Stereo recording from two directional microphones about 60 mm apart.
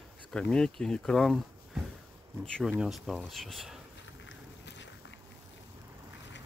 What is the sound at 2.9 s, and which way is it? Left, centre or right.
Speech, centre.